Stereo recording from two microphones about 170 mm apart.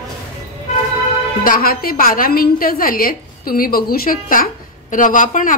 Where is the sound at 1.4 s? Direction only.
60° left (ahead or behind).